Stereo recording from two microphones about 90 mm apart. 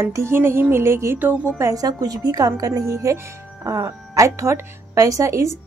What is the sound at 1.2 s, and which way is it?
Music, 20° right (ahead or behind).